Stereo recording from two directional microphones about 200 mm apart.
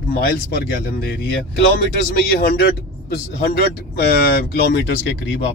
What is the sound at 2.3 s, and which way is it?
A man's voice, 50° left (ahead or behind).